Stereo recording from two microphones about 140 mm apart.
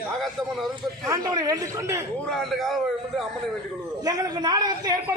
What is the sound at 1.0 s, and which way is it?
A man's voice, 25° right (ahead or behind).